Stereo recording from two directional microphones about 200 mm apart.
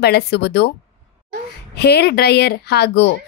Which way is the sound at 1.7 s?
55° left (ahead or behind).